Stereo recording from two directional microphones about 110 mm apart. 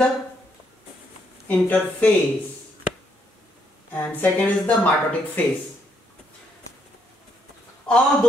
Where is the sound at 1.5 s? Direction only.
15° left (ahead or behind).